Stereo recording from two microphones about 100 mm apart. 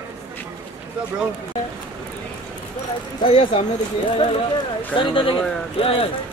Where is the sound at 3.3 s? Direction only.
75° left (ahead or behind).